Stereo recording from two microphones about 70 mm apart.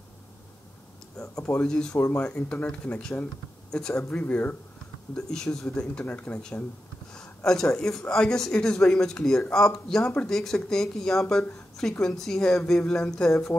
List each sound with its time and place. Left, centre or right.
1.4 s speech: centre
2.0 s speech: left
5.1 s speech: centre